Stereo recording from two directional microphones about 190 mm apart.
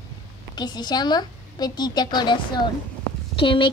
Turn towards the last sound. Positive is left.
turn(degrees=25)  # may be behind; listen again after turning